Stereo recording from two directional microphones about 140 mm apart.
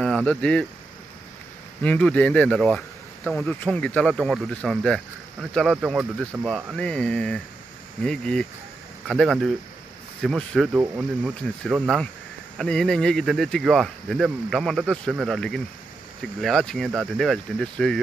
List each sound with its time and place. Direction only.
0.0 s speech: 5° left (ahead or behind)
1.8 s speech: 10° left (ahead or behind)
10.8 s speech: 15° right (ahead or behind)
11.6 s speech: centre (ahead or behind)